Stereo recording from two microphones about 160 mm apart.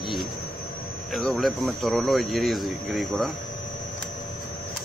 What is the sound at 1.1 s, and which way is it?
Speech, centre (ahead or behind).